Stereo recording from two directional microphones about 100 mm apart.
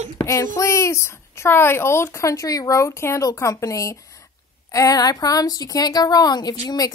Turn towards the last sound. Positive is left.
turn(degrees=40)  # may be behind; listen again after turning